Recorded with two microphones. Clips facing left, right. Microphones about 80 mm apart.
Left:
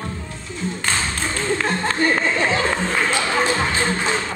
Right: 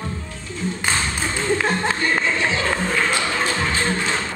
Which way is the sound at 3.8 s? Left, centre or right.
Centre.